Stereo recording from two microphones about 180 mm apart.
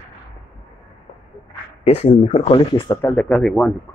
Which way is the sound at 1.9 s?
35° left (ahead or behind).